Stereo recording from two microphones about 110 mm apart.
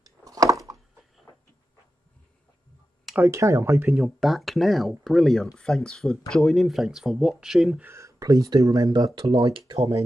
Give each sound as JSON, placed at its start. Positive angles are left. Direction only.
{"t": 0.0, "sound": "a sound", "side_deg": -35}
{"t": 3.2, "sound": "speech", "side_deg": -25}
{"t": 3.9, "sound": "speech", "side_deg": 0}
{"t": 7.8, "sound": "speech", "side_deg": -25}
{"t": 9.2, "sound": "speech", "side_deg": -50}